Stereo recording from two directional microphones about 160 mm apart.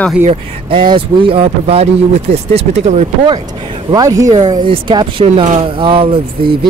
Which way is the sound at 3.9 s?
25° right (ahead or behind).